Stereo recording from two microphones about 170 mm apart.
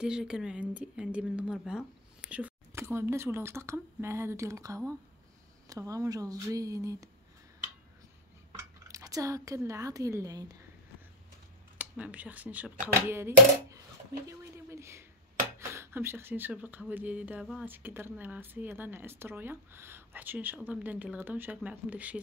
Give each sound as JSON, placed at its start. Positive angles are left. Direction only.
{"t": 0.0, "sound": "speech", "side_deg": -5}
{"t": 8.5, "sound": "speech", "side_deg": -20}
{"t": 11.8, "sound": "speech", "side_deg": -10}
{"t": 14.2, "sound": "a sound", "side_deg": -15}
{"t": 15.6, "sound": "speech", "side_deg": -15}